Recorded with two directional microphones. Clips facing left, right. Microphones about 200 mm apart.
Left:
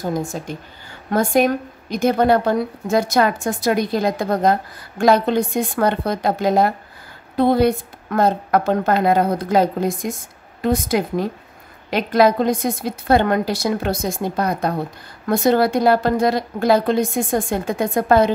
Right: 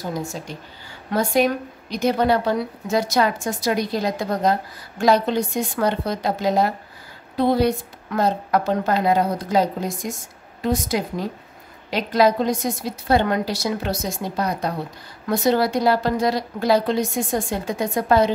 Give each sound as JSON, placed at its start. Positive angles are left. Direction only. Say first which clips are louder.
{"t": 0.5, "sound": "a woman's voice", "louder": "left 4 dB", "side_deg": 50}